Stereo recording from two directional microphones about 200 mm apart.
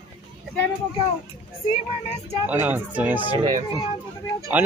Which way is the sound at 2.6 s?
10° right (ahead or behind).